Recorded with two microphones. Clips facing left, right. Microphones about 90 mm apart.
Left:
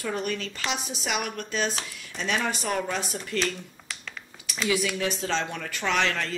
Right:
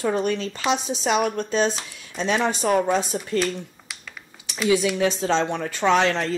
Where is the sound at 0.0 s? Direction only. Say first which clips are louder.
Right 7 dB; 25° right (ahead or behind).